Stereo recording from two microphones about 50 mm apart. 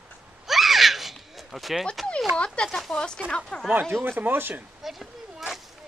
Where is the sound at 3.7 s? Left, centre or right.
Right.